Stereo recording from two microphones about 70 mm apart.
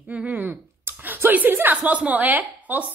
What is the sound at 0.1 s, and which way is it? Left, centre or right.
A woman's voice, right.